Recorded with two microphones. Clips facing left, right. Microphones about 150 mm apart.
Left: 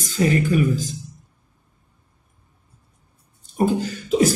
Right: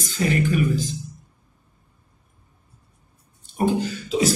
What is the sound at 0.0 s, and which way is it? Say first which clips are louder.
Speech: left 2 dB; 40° left (ahead or behind).